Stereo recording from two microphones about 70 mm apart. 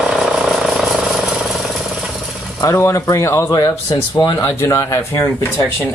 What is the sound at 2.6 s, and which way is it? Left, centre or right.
Speech, left.